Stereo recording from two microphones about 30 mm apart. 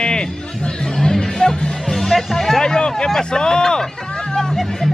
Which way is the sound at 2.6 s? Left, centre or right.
Left.